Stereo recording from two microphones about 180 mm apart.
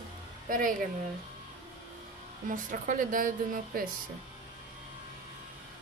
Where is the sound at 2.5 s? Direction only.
45° right (ahead or behind).